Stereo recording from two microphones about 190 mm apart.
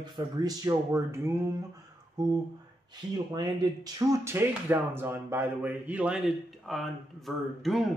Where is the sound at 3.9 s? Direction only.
15° right (ahead or behind).